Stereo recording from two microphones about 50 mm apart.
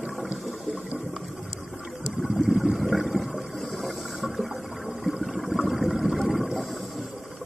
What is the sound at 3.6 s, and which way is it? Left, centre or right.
Water, centre.